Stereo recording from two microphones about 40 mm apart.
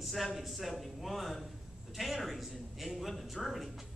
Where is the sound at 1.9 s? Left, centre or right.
Centre.